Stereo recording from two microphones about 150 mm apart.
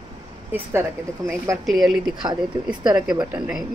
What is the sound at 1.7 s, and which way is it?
Speech, centre (ahead or behind).